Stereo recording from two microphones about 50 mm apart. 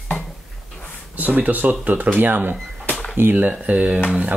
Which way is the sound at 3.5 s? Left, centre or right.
Right.